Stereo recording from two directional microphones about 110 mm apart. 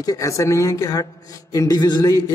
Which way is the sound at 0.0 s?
30° left (ahead or behind).